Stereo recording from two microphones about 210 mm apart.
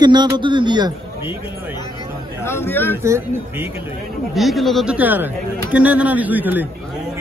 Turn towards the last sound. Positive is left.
turn(degrees=-10)  # may be behind; listen again after turning